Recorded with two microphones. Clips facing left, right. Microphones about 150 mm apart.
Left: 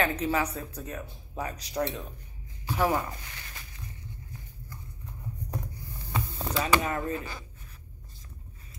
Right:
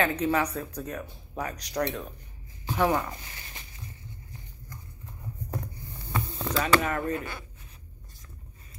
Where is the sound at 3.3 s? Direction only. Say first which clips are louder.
Even; 25° right (ahead or behind).